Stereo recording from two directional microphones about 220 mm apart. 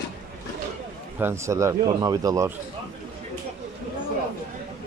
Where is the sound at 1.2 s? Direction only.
10° right (ahead or behind).